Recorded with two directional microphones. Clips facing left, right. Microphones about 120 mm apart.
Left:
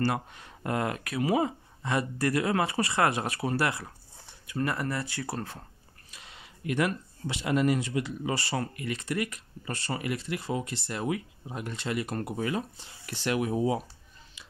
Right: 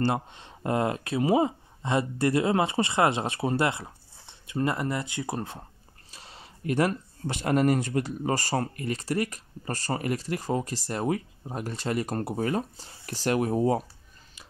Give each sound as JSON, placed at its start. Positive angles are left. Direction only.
{"t": 0.0, "sound": "speech", "side_deg": -25}
{"t": 6.0, "sound": "speech", "side_deg": -35}